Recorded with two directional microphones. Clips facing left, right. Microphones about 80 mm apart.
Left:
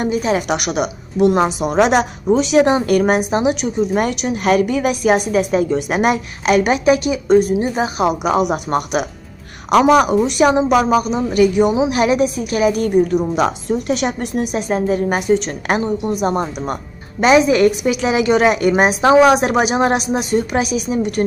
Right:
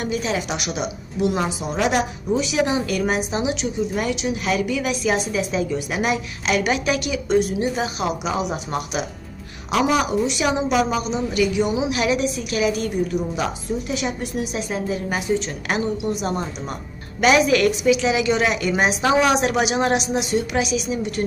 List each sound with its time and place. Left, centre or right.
0.0 s a woman's voice: left
0.5 s a woman's voice: left
8.1 s a woman's voice: left
14.4 s a woman's voice: left
15.7 s a woman's voice: left
17.2 s a woman's voice: left